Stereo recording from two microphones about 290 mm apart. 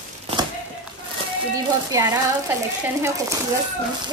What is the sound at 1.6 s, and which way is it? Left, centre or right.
A woman's voice, centre.